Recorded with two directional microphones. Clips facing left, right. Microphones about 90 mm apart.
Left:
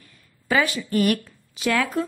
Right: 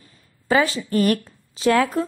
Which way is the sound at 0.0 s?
25° right (ahead or behind).